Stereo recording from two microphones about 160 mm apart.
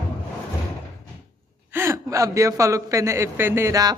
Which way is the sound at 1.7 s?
15° right (ahead or behind).